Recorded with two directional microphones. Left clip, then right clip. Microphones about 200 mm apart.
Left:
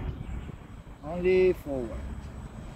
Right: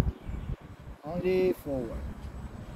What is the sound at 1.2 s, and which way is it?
Speech, 60° right (ahead or behind).